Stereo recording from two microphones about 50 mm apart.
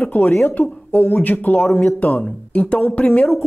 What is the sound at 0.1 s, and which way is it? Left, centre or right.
Speech, left.